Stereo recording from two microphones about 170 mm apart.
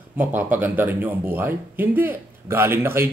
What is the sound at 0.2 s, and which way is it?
Speech, 10° right (ahead or behind).